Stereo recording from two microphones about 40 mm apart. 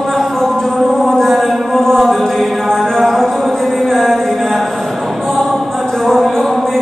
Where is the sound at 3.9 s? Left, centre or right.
Centre.